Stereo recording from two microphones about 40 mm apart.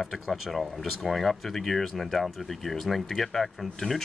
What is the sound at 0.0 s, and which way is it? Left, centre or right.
Speech, centre.